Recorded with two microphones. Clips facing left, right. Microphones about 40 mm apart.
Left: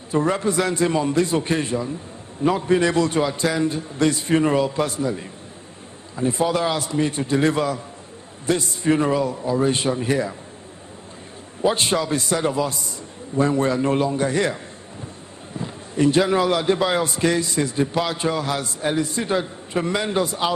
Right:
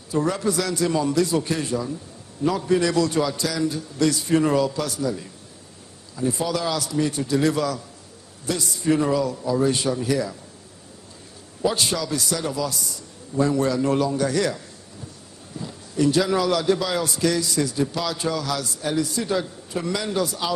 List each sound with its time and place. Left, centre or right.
0.1 s a man's voice: left
11.6 s a man's voice: left